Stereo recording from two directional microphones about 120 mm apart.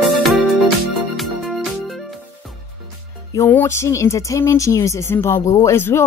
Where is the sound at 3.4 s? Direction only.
20° left (ahead or behind).